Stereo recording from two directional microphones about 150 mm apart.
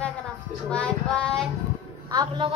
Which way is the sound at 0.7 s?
5° left (ahead or behind).